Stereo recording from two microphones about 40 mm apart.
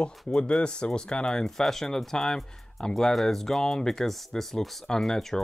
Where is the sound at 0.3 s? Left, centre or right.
Left.